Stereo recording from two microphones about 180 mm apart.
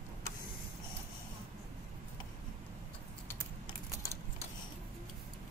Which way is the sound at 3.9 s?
15° left (ahead or behind).